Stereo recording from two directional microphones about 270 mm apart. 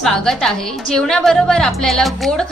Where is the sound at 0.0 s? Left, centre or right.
Centre.